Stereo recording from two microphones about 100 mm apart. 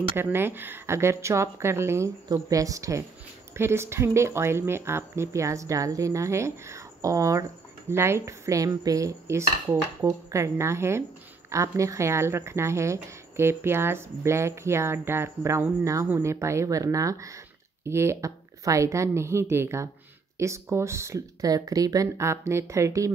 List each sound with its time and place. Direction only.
0.1 s speech: 25° right (ahead or behind)